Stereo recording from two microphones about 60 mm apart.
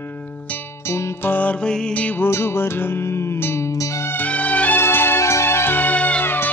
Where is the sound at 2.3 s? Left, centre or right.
Left.